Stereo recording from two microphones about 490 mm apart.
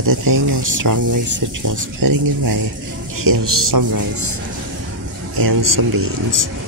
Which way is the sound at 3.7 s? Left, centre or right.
Right.